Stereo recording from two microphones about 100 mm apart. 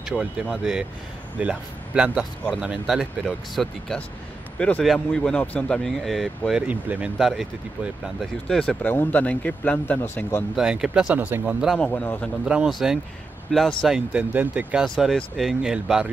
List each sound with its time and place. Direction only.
0.0 s speech: centre (ahead or behind)
4.6 s speech: 10° left (ahead or behind)
6.7 s speech: 15° right (ahead or behind)
7.2 s speech: 5° right (ahead or behind)
8.8 s speech: 20° left (ahead or behind)
10.5 s speech: 5° right (ahead or behind)
11.8 s speech: 15° left (ahead or behind)
12.4 s speech: 5° right (ahead or behind)
13.8 s speech: 10° right (ahead or behind)